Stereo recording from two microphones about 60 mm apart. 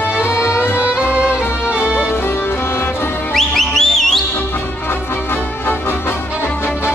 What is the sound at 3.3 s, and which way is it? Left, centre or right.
Music, centre.